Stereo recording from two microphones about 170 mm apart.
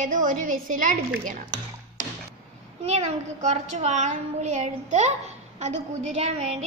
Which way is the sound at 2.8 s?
40° right (ahead or behind).